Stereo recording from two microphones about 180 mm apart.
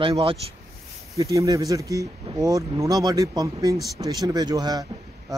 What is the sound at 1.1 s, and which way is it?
Speech, 20° right (ahead or behind).